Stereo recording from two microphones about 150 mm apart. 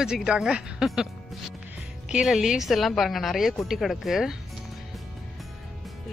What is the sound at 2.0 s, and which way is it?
Speech, 5° right (ahead or behind).